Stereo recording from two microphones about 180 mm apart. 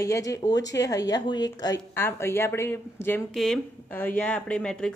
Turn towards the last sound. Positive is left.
turn(degrees=5)  # may be behind; listen again after turning